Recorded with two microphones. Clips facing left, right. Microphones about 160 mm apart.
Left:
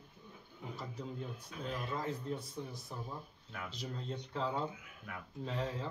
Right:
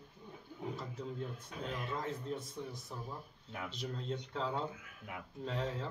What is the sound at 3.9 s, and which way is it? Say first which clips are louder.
Speech: even; centre (ahead or behind).